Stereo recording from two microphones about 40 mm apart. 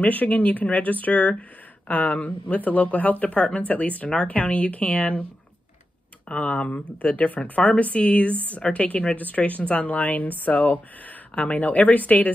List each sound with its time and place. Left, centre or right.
0.0 s speech: left
6.2 s speech: left